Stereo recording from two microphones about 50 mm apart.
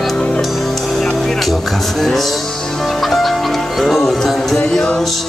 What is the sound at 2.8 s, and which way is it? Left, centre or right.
Music, centre.